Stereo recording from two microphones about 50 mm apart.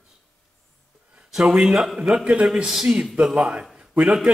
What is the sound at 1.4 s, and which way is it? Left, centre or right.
A man's voice, centre.